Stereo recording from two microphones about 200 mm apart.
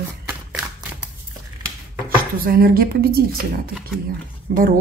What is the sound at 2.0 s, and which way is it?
Speech, 45° right (ahead or behind).